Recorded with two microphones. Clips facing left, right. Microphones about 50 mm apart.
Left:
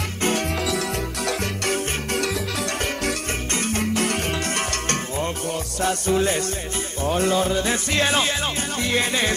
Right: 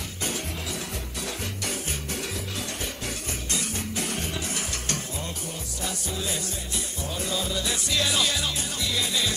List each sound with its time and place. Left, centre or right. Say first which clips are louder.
0.2 s music: left 10 dB; left
1.2 s music: left 8 dB; left
3.5 s music: left 9 dB; left